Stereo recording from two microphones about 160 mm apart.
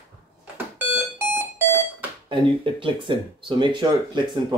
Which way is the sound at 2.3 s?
30° right (ahead or behind).